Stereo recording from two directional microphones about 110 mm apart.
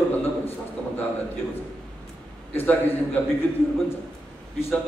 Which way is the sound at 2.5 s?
15° left (ahead or behind).